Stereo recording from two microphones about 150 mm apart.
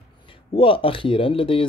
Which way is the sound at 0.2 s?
35° left (ahead or behind).